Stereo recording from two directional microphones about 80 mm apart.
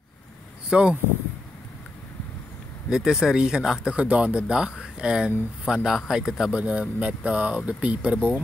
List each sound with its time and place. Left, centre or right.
0.7 s speech: centre
2.9 s speech: centre
6.5 s speech: centre